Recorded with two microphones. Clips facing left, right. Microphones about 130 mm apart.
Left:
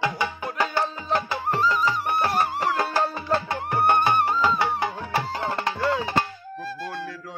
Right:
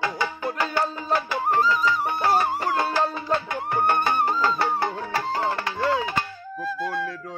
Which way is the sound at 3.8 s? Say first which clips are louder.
Left 2 dB; 20° left (ahead or behind).